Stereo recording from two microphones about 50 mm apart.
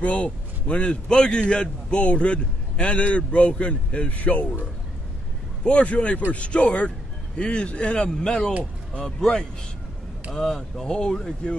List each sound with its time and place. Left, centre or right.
0.0 s a man's voice: left
5.6 s a man's voice: left